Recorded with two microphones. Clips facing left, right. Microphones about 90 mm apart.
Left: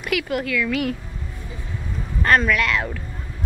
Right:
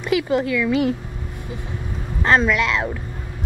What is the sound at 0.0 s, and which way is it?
Speech, 25° right (ahead or behind).